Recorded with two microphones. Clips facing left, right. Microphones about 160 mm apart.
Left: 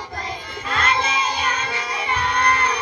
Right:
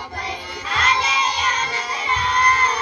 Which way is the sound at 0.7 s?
50° left (ahead or behind).